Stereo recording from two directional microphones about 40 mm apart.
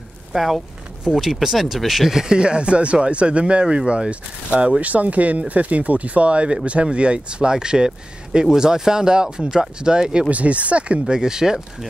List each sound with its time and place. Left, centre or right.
0.3 s speech: centre
10.3 s speech: right
11.1 s speech: centre